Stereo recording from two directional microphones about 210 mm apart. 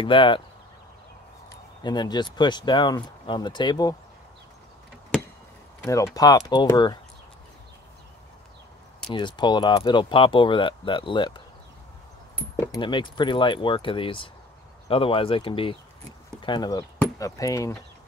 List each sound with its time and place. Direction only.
0.0 s speech: 25° left (ahead or behind)
1.5 s speech: 20° left (ahead or behind)
6.1 s speech: 20° left (ahead or behind)
9.1 s speech: 20° left (ahead or behind)
12.5 s speech: 20° left (ahead or behind)